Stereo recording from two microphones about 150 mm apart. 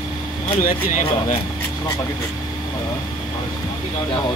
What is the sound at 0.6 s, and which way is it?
Speech, 65° left (ahead or behind).